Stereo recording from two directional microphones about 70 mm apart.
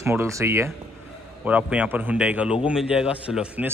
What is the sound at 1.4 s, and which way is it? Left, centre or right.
A man's voice, centre.